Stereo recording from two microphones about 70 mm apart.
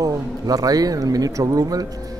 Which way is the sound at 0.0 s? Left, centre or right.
Right.